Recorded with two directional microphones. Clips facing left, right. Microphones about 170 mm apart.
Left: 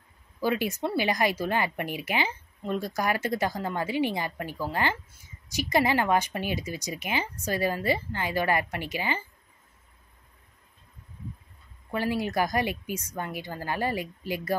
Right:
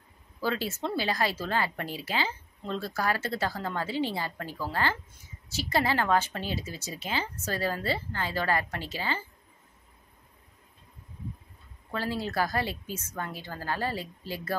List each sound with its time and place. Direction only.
0.4 s a woman's voice: 15° left (ahead or behind)
11.9 s a woman's voice: 15° left (ahead or behind)